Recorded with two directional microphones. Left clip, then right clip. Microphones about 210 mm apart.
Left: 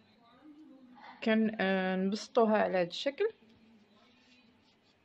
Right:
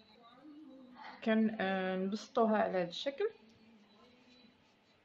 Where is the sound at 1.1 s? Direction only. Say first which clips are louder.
Left 3 dB; 45° left (ahead or behind).